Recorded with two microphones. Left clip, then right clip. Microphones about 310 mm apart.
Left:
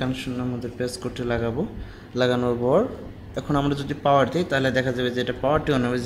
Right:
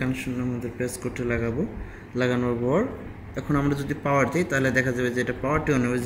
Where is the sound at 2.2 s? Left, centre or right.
Left.